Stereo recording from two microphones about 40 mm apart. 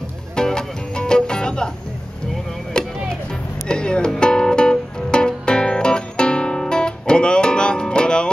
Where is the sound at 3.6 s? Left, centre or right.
Left.